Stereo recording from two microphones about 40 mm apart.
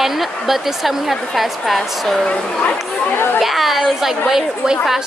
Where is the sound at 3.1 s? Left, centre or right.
Left.